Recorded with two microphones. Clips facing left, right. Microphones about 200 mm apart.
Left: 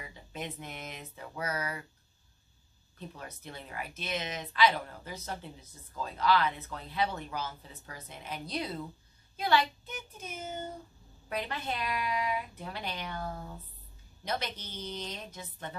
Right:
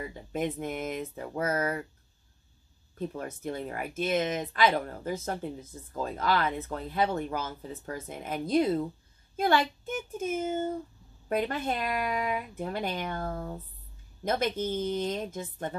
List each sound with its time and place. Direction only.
0.0 s speech: 50° right (ahead or behind)
3.0 s speech: 50° right (ahead or behind)